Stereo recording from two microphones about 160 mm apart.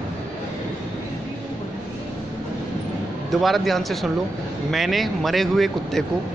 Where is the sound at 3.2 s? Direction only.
Centre (ahead or behind).